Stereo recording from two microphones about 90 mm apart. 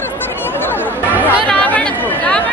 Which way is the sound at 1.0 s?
20° right (ahead or behind).